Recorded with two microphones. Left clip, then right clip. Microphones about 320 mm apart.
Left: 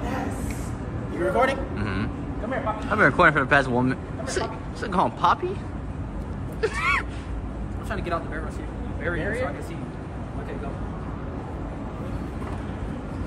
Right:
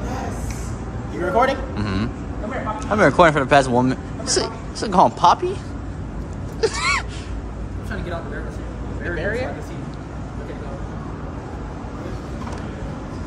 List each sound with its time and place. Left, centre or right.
1.3 s speech: centre
6.6 s gasp: centre